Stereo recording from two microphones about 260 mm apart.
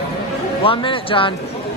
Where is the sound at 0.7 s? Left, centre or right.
Centre.